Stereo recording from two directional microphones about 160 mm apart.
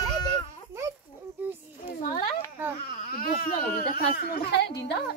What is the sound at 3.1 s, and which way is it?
Baby cry, 60° left (ahead or behind).